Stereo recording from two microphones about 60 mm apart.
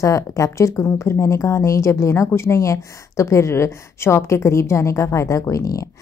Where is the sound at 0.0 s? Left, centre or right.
Left.